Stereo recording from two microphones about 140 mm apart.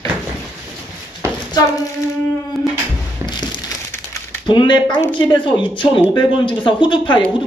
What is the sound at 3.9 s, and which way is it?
Crumpling, 15° left (ahead or behind).